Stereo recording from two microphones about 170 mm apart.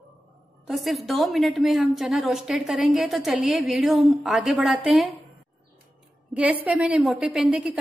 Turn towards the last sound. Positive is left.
turn(degrees=-5)  # may be behind; listen again after turning